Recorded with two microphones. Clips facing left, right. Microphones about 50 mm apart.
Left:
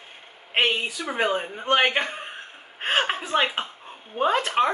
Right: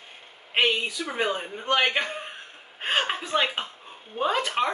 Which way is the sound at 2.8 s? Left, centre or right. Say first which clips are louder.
Left 2 dB; centre.